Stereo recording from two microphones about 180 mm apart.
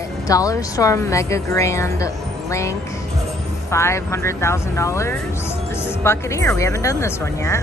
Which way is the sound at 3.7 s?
15° left (ahead or behind).